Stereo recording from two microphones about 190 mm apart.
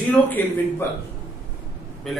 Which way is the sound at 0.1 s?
10° left (ahead or behind).